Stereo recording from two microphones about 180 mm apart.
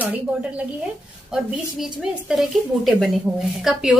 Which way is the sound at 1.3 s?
Centre (ahead or behind).